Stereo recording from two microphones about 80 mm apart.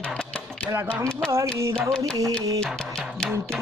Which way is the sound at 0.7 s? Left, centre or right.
Right.